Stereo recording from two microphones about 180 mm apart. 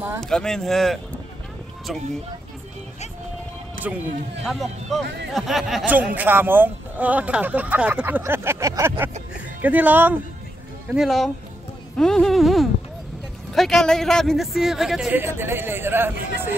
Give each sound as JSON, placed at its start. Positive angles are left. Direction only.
{"t": 0.2, "sound": "speech", "side_deg": 5}
{"t": 4.5, "sound": "speech", "side_deg": 0}
{"t": 5.0, "sound": "speech", "side_deg": -75}
{"t": 5.3, "sound": "speech", "side_deg": 0}